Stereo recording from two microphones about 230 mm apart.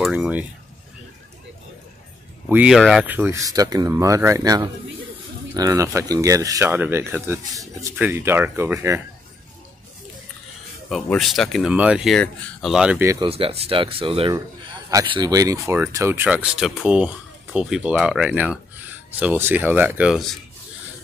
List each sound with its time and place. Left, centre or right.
0.0 s a sound: centre
2.4 s speech: centre
10.9 s speech: centre
13.3 s speech: right; by 20.3 s centre